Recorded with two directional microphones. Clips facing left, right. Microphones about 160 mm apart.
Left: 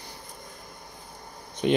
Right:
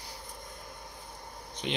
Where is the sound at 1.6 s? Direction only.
50° left (ahead or behind).